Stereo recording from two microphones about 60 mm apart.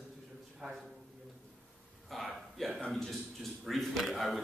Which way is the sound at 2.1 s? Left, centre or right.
Centre.